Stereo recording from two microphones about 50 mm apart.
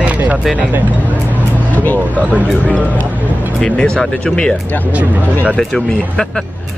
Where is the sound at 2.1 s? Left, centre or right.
Right.